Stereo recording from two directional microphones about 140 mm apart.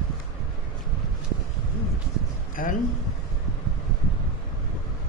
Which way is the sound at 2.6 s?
75° left (ahead or behind).